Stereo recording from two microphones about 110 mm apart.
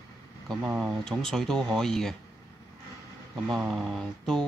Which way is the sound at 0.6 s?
15° right (ahead or behind).